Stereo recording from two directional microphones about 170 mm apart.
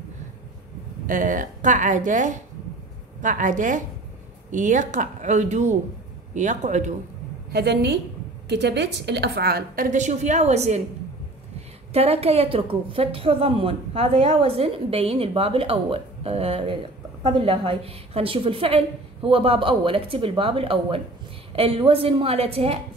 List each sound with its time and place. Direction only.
1.0 s speech: 50° right (ahead or behind)
7.5 s a woman's voice: 75° right (ahead or behind); by 10.8 s 40° right (ahead or behind)
11.9 s a woman's voice: 35° right (ahead or behind)